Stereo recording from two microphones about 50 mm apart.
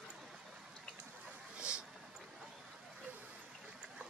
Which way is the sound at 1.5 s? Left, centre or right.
Right.